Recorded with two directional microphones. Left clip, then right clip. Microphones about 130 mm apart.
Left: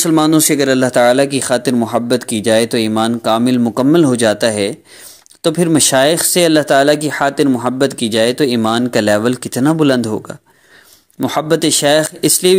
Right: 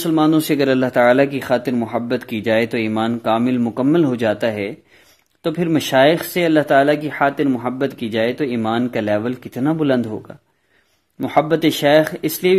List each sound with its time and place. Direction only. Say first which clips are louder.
0.0 s speech: left 4 dB; 45° left (ahead or behind)
0.4 s speech: left 4 dB; 15° left (ahead or behind); by 12.5 s 40° left (ahead or behind)